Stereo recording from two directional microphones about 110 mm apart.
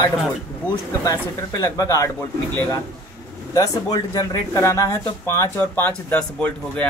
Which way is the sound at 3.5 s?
30° left (ahead or behind).